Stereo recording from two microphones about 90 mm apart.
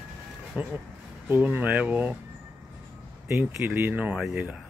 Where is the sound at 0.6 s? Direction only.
15° right (ahead or behind).